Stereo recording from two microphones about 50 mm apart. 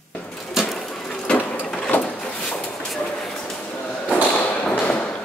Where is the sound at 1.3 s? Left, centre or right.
Centre.